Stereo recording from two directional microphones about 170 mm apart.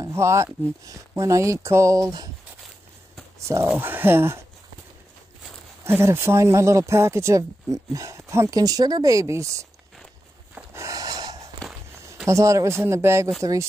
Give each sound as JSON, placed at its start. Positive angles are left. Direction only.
{"t": 0.0, "sound": "speech", "side_deg": -15}
{"t": 3.7, "sound": "speech", "side_deg": -10}
{"t": 5.9, "sound": "speech", "side_deg": -15}
{"t": 10.5, "sound": "pant", "side_deg": -15}
{"t": 12.3, "sound": "speech", "side_deg": -20}